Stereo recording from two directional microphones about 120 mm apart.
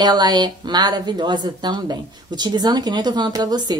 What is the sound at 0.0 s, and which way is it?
Speech, 35° right (ahead or behind).